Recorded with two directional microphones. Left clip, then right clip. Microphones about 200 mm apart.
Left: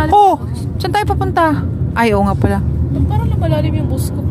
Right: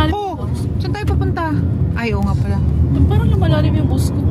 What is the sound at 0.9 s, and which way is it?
Speech, 60° left (ahead or behind).